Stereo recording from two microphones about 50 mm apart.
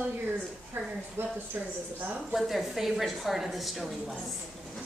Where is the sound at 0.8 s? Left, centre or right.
Right.